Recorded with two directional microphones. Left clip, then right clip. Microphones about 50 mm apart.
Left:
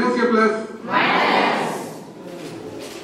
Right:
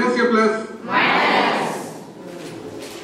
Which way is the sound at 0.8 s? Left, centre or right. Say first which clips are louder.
Right 1 dB; centre.